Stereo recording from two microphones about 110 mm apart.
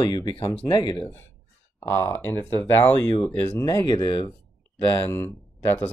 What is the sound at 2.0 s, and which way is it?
Speech, 20° left (ahead or behind).